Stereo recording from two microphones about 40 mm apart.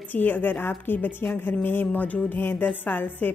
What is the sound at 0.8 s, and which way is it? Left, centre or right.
A woman's voice, left.